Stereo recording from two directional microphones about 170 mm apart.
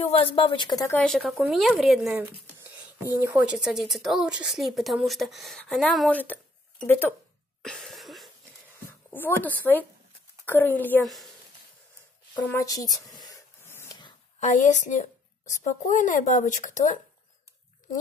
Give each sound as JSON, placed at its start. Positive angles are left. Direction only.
{"t": 0.0, "sound": "speech", "side_deg": 35}
{"t": 0.9, "sound": "a woman's voice", "side_deg": 5}
{"t": 2.6, "sound": "beatboxing", "side_deg": -10}
{"t": 3.2, "sound": "a woman's voice", "side_deg": -10}
{"t": 7.6, "sound": "cough", "side_deg": 0}
{"t": 9.1, "sound": "speech", "side_deg": 10}
{"t": 12.4, "sound": "speech", "side_deg": 10}
{"t": 12.6, "sound": "a sound", "side_deg": 20}
{"t": 14.4, "sound": "speech", "side_deg": 45}